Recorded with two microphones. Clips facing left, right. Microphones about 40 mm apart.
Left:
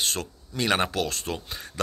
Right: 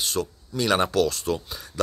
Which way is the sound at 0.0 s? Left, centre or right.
Left.